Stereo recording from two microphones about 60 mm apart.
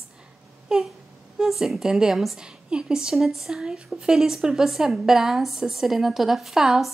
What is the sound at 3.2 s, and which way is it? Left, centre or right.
A woman's voice, centre.